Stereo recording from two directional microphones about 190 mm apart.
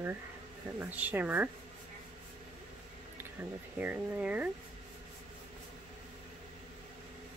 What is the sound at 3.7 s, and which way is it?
Speech, 10° right (ahead or behind).